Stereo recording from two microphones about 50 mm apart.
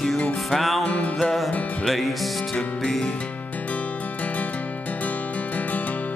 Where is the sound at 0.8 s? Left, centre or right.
Left.